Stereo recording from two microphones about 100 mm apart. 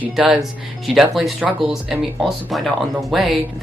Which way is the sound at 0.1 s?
5° right (ahead or behind).